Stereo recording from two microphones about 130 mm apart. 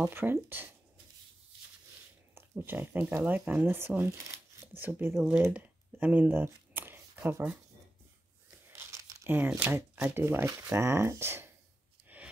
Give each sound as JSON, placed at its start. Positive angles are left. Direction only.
{"t": 0.1, "sound": "speech", "side_deg": -15}
{"t": 2.3, "sound": "speech", "side_deg": -15}
{"t": 8.5, "sound": "tearing", "side_deg": -20}
{"t": 9.9, "sound": "speech", "side_deg": -15}
{"t": 12.1, "sound": "a sound", "side_deg": -10}